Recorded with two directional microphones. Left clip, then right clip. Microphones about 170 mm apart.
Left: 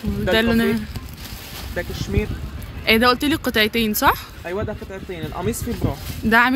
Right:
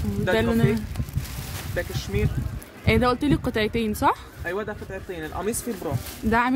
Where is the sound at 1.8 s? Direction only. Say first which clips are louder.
Left 2 dB; 50° left (ahead or behind).